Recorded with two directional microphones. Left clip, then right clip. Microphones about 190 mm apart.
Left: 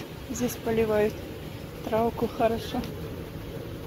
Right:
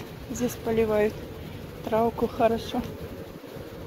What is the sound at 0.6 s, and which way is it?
A woman's voice, 5° right (ahead or behind).